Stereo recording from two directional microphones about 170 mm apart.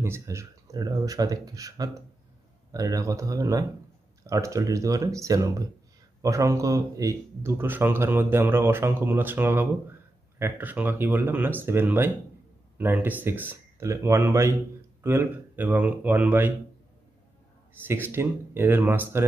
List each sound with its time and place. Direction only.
0.0 s speech: 15° right (ahead or behind)
17.8 s speech: 15° right (ahead or behind)